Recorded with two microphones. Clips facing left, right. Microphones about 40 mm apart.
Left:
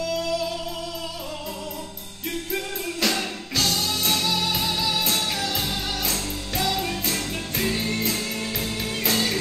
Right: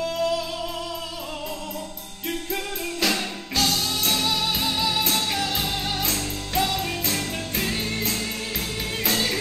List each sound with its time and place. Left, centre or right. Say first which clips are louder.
0.0 s music: right 2 dB; right
2.5 s music: even; centre
4.6 s music: right 1 dB; right
5.0 s music: right 1 dB; centre